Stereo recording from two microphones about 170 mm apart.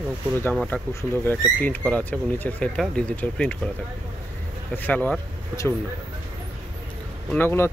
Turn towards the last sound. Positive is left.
turn(degrees=15)  # may be behind; listen again after turning